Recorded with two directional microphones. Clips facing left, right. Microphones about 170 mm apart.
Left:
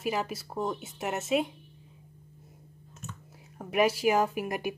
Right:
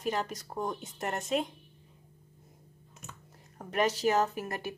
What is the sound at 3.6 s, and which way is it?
A woman's voice, 10° left (ahead or behind).